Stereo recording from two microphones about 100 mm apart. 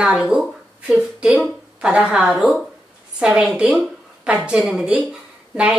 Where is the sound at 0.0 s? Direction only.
10° right (ahead or behind).